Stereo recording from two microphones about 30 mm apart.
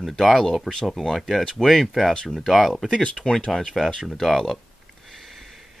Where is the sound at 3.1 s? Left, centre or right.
Left.